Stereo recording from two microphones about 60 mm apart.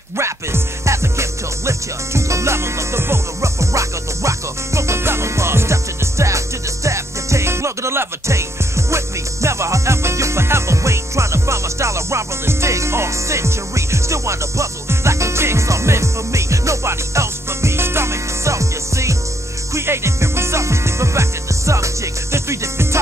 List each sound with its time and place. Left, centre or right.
0.2 s music: right